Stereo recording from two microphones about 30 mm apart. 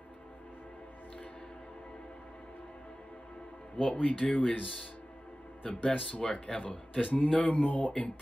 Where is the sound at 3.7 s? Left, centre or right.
Left.